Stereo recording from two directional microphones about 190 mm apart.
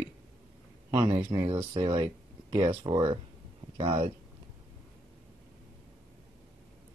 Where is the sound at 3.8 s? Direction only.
35° right (ahead or behind).